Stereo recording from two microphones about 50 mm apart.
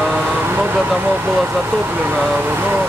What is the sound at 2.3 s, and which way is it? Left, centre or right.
Speech, right.